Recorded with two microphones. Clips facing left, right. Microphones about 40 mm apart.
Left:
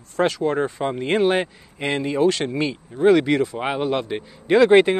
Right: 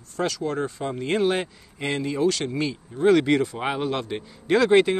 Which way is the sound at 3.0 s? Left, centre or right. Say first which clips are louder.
Left 2 dB; centre.